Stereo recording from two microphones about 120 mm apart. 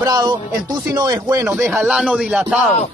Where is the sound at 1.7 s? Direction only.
5° right (ahead or behind).